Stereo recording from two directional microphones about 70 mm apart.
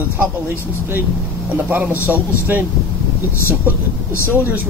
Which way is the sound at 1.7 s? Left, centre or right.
Right.